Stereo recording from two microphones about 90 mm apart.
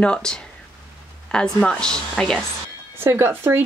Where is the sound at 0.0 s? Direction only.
10° left (ahead or behind).